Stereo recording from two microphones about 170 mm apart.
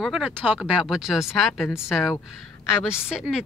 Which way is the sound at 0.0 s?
5° right (ahead or behind).